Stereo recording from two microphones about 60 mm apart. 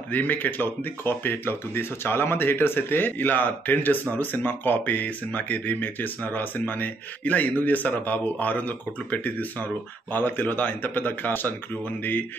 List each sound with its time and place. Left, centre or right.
0.1 s speech: left